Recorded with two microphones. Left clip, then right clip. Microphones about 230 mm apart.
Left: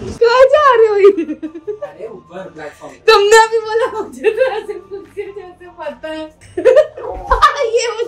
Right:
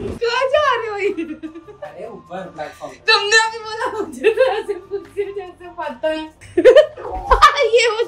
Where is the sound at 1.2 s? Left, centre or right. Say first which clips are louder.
Left 6 dB; centre.